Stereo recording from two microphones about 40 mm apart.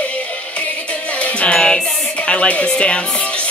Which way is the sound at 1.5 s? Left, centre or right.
Centre.